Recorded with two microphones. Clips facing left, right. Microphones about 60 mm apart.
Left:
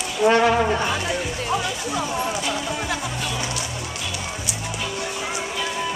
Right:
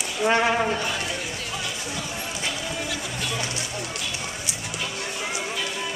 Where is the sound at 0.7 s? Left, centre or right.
Left.